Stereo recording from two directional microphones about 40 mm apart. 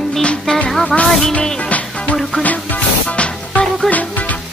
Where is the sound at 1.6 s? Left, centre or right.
Left.